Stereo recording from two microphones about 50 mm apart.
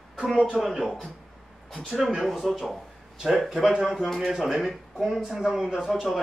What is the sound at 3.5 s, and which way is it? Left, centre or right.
A man's voice, centre.